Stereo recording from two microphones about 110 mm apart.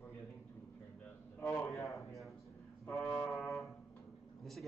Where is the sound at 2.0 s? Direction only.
Centre (ahead or behind).